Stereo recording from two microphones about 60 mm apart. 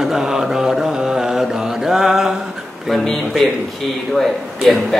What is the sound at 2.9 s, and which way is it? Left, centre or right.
Speech, centre.